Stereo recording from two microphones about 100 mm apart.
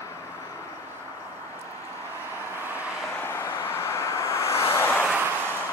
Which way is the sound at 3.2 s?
25° left (ahead or behind).